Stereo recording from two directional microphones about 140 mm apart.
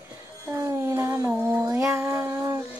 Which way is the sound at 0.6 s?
20° right (ahead or behind).